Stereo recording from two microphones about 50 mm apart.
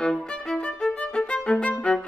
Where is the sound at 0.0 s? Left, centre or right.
Centre.